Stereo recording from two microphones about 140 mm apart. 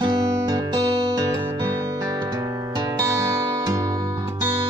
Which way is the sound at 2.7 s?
25° right (ahead or behind).